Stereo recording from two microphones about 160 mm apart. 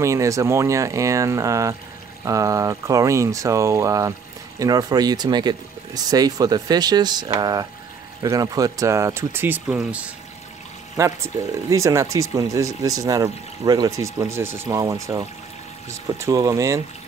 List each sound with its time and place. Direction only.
0.0 s speech: 20° right (ahead or behind)
11.0 s speech: 20° right (ahead or behind)